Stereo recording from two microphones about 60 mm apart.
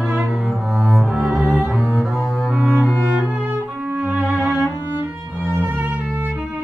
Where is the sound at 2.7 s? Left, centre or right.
Left.